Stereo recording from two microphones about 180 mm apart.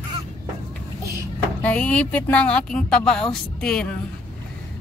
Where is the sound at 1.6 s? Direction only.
10° left (ahead or behind).